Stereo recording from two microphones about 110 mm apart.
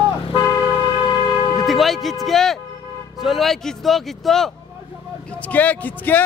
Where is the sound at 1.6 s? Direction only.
Centre (ahead or behind).